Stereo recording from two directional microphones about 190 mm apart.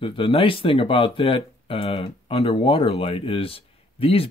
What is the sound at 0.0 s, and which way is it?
Speech, 30° left (ahead or behind).